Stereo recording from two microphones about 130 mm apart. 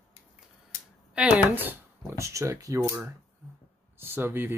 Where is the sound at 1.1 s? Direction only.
10° right (ahead or behind).